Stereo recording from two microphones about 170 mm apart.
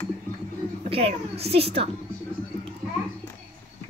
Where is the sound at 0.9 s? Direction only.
35° right (ahead or behind).